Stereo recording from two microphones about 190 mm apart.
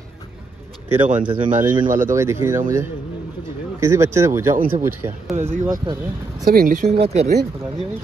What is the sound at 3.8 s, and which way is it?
Speech, 15° right (ahead or behind).